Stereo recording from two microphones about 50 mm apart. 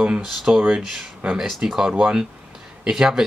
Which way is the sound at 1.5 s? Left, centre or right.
Centre.